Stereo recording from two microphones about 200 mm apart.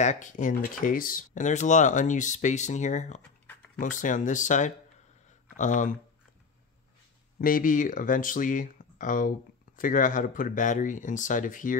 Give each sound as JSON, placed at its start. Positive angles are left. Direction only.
{"t": 0.0, "sound": "speech", "side_deg": 35}
{"t": 3.2, "sound": "a sound", "side_deg": 5}
{"t": 3.7, "sound": "speech", "side_deg": 40}
{"t": 7.3, "sound": "speech", "side_deg": 45}